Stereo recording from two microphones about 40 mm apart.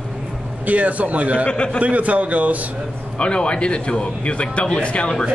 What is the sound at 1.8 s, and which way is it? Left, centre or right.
Speech, right.